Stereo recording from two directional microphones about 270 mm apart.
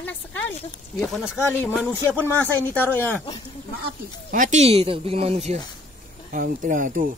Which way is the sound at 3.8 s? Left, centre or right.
Right.